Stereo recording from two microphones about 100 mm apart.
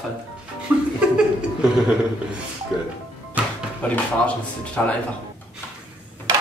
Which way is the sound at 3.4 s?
15° right (ahead or behind).